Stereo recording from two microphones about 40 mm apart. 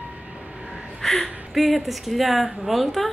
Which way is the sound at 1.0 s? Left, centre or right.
Centre.